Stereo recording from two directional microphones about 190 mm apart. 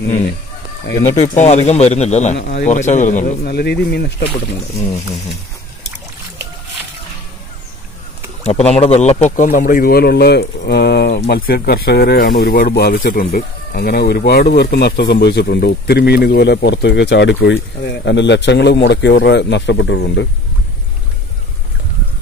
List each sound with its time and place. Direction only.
1.1 s a man's voice: 35° left (ahead or behind)
3.4 s speech: 60° left (ahead or behind)
8.7 s speech: 35° left (ahead or behind); by 20.2 s 70° left (ahead or behind)